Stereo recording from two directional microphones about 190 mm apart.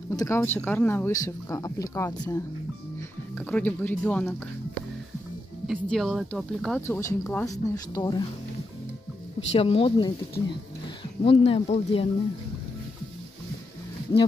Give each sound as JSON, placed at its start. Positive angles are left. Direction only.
{"t": 0.1, "sound": "speech", "side_deg": 15}
{"t": 5.7, "sound": "speech", "side_deg": 0}
{"t": 9.5, "sound": "speech", "side_deg": 30}
{"t": 11.2, "sound": "speech", "side_deg": 30}